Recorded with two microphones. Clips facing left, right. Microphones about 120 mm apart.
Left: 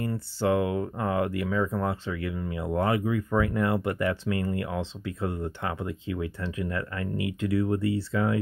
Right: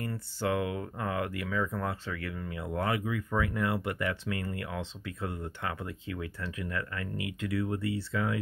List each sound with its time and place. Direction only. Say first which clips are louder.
0.0 s speech: left 6 dB; 30° left (ahead or behind)